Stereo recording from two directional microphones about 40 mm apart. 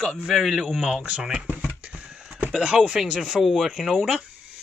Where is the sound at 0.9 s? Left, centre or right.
Right.